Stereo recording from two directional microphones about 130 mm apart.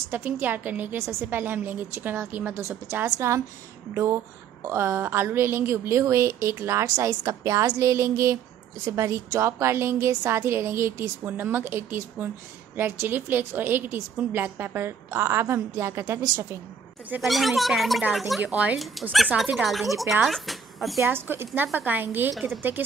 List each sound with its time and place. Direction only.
0.1 s a woman's voice: 15° right (ahead or behind)
17.2 s speech: centre (ahead or behind)
18.4 s a woman's voice: 10° right (ahead or behind)
21.0 s a woman's voice: 15° right (ahead or behind)